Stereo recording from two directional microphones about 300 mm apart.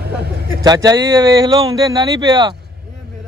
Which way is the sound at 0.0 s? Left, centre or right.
Right.